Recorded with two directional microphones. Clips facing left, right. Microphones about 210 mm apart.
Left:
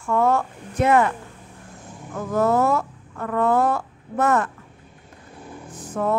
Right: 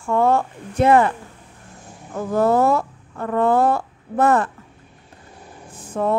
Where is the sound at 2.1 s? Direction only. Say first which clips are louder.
Right 2 dB; 30° right (ahead or behind).